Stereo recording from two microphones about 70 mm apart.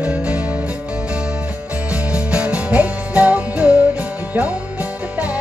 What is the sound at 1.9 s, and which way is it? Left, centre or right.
Music, centre.